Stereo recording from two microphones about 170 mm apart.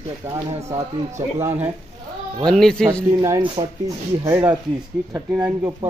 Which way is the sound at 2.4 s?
5° left (ahead or behind).